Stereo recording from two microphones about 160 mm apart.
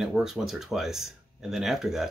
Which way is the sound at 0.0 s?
Centre (ahead or behind).